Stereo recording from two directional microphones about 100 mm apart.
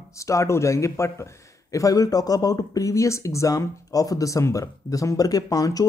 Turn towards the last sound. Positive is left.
turn(degrees=35)  # may be behind; listen again after turning